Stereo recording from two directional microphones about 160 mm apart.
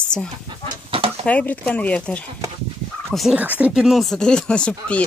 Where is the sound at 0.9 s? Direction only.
35° right (ahead or behind).